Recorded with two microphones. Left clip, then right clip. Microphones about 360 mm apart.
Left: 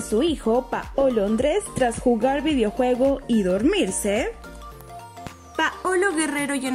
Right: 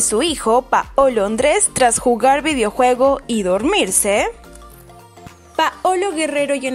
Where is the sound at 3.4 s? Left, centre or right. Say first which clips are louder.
Right 6 dB; right.